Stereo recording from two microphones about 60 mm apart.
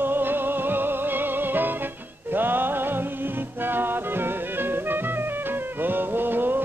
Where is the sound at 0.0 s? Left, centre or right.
Right.